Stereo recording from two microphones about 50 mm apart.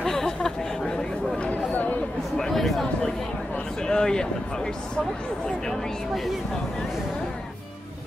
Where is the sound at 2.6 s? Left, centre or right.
Centre.